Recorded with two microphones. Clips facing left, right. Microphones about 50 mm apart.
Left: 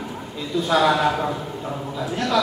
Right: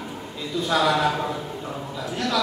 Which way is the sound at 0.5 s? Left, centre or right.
Centre.